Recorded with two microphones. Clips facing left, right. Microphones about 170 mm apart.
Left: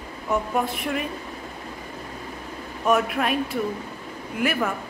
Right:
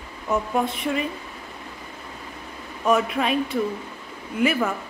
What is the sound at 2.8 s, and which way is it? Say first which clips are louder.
A woman's voice: right 1 dB; centre (ahead or behind).